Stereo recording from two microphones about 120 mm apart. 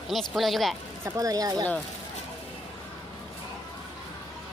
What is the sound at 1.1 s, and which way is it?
Speech, 30° right (ahead or behind).